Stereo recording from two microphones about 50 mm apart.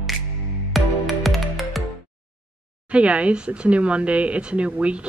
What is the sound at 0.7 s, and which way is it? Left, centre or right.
Music, centre.